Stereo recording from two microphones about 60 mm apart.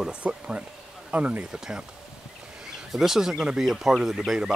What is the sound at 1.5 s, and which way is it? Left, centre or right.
Speech, centre.